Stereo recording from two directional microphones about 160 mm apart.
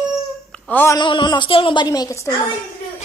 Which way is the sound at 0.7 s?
15° left (ahead or behind).